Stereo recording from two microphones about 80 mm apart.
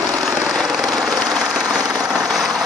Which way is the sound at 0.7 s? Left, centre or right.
Centre.